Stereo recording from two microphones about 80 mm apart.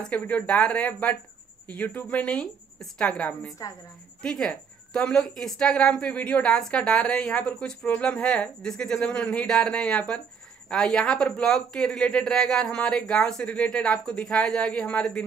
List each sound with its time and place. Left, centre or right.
0.0 s speech: centre
3.6 s a woman's voice: left
4.2 s speech: centre